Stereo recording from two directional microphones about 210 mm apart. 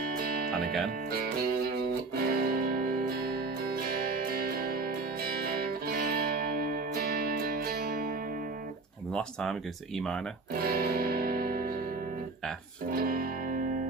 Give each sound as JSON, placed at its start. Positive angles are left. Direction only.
{"t": 0.0, "sound": "music", "side_deg": -45}
{"t": 9.1, "sound": "speech", "side_deg": 0}
{"t": 10.5, "sound": "music", "side_deg": -45}
{"t": 12.9, "sound": "music", "side_deg": -45}